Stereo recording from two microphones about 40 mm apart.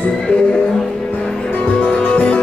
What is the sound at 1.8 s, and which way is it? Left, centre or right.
Music, left.